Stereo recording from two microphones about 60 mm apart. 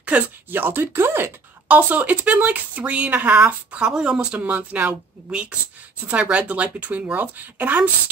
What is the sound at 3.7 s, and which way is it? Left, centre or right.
Speech, centre.